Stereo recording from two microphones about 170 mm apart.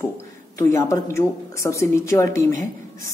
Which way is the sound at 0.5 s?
15° left (ahead or behind).